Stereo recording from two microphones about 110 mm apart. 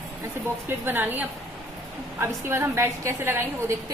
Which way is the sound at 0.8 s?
20° right (ahead or behind).